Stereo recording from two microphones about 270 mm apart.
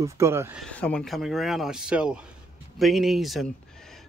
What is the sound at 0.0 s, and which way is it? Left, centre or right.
Speech, centre.